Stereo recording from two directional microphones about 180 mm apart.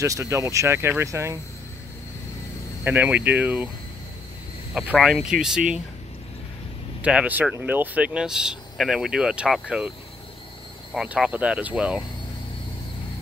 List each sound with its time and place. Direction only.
0.0 s speech: 15° right (ahead or behind)
2.8 s speech: 10° right (ahead or behind)
4.7 s speech: 5° right (ahead or behind)
7.0 s speech: 5° right (ahead or behind)